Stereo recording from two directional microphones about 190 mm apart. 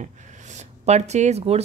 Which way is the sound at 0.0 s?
40° right (ahead or behind).